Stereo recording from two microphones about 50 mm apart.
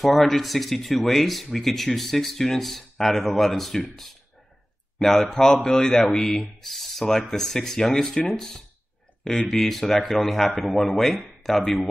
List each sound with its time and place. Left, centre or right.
0.0 s speech: centre